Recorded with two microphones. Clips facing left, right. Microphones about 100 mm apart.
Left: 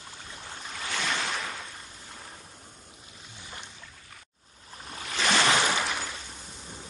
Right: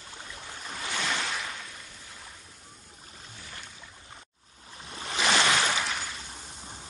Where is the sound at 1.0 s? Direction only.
Centre (ahead or behind).